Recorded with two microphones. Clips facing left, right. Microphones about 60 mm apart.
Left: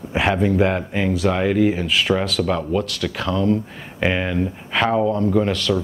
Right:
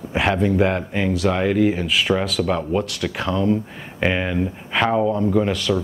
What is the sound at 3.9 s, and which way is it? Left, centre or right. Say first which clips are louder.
Speech: even; centre.